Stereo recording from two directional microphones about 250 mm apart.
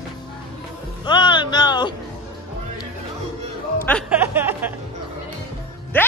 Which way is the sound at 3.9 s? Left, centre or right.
Centre.